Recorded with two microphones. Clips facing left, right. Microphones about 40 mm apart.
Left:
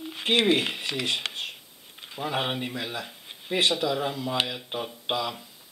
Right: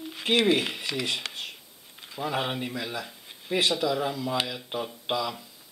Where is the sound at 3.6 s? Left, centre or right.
Centre.